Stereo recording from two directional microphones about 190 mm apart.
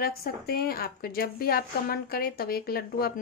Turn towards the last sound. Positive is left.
turn(degrees=55)  # may be behind; listen again after turning